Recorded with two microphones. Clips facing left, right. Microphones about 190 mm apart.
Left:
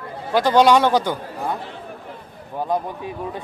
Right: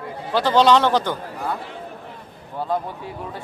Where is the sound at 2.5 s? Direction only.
15° left (ahead or behind).